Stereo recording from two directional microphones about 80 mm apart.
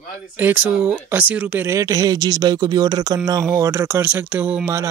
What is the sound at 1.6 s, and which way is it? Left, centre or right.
Speech, right.